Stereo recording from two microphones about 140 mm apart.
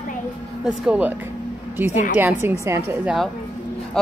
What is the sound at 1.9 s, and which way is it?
Speech, 55° left (ahead or behind).